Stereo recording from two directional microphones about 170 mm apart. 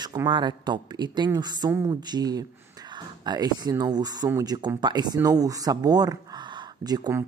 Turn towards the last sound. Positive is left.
turn(degrees=-20)  # may be behind; listen again after turning